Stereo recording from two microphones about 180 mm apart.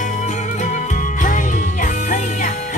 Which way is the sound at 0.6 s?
45° left (ahead or behind).